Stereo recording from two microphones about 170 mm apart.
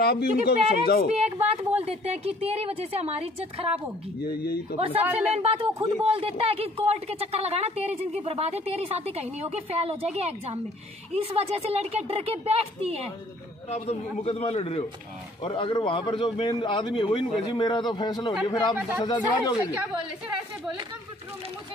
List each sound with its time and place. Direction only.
0.0 s speech: 65° left (ahead or behind)
1.1 s speech: 40° right (ahead or behind)
4.4 s speech: 65° left (ahead or behind)
4.7 s speech: 35° right (ahead or behind)
5.0 s speech: 10° right (ahead or behind)
5.3 s speech: 35° right (ahead or behind)
13.7 s a man's voice: 40° left (ahead or behind); by 19.5 s 25° left (ahead or behind)